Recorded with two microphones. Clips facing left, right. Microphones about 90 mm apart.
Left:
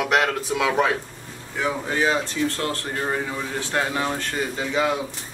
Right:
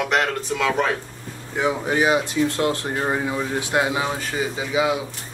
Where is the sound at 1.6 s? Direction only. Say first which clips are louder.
Right 3 dB; 15° right (ahead or behind).